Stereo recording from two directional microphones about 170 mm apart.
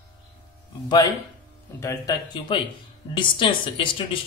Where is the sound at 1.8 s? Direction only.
20° left (ahead or behind).